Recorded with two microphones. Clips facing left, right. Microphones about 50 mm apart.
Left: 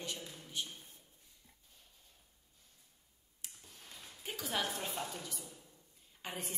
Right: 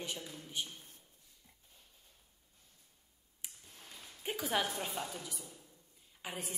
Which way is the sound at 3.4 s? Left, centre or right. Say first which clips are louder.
Right 1 dB; centre.